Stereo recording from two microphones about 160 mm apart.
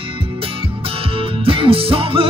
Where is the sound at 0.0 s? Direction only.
35° right (ahead or behind).